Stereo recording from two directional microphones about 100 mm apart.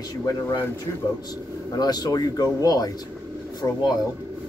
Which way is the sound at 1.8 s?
45° left (ahead or behind).